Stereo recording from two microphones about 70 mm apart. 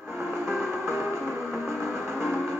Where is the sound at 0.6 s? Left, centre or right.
Right.